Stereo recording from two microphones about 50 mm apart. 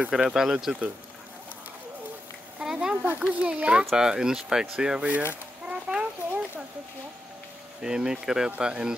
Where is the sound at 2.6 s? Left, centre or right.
Centre.